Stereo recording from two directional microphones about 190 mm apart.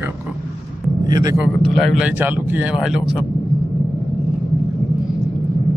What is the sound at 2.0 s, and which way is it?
Speech, 10° right (ahead or behind).